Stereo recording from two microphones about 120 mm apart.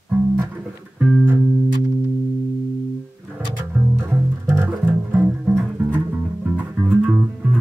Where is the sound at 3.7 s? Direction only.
20° right (ahead or behind).